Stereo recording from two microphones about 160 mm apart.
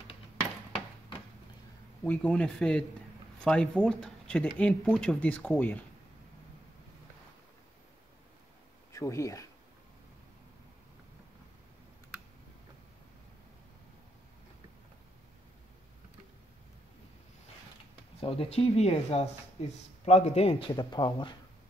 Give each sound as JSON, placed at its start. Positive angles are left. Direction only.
{"t": 2.0, "sound": "speech", "side_deg": 5}
{"t": 8.9, "sound": "speech", "side_deg": 20}
{"t": 18.2, "sound": "speech", "side_deg": 35}
{"t": 20.7, "sound": "speech", "side_deg": 25}